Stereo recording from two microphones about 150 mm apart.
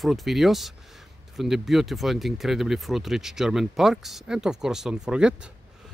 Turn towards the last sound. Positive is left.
turn(degrees=-5)  # may be behind; listen again after turning